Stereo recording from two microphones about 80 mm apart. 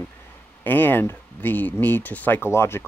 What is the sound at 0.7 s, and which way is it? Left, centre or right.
Speech, left.